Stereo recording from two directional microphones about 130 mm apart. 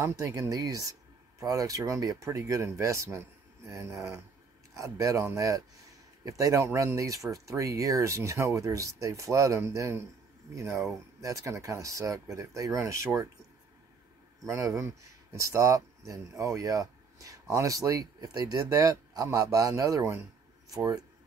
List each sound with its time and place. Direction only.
0.0 s speech: 25° right (ahead or behind)
14.4 s speech: 25° right (ahead or behind)